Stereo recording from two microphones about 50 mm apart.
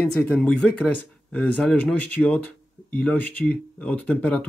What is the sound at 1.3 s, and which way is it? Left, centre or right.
Speech, left.